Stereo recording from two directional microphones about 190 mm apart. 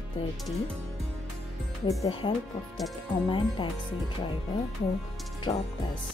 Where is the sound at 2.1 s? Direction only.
30° left (ahead or behind).